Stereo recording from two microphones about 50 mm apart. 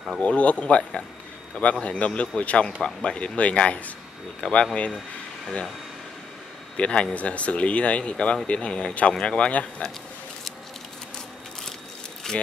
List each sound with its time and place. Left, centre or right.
0.2 s speech: left
6.8 s speech: left
12.2 s speech: centre